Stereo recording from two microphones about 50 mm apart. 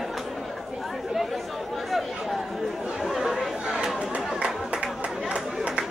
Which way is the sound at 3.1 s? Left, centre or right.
Centre.